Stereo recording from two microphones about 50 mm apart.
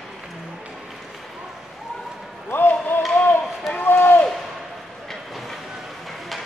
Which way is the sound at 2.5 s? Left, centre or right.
Left.